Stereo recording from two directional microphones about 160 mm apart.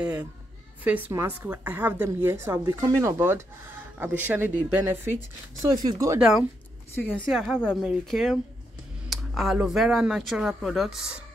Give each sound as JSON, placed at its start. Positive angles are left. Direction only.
{"t": 0.8, "sound": "a woman's voice", "side_deg": -10}
{"t": 7.1, "sound": "speech", "side_deg": 5}